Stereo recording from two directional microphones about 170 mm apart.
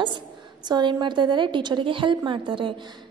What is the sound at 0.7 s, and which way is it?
A woman's voice, 25° right (ahead or behind).